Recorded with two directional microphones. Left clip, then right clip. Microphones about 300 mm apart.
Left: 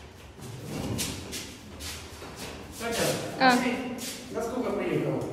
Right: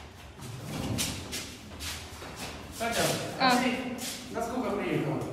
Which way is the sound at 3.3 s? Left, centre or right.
Centre.